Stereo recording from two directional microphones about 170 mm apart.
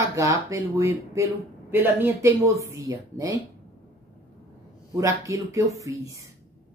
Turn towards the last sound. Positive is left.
turn(degrees=-20)  # may be behind; listen again after turning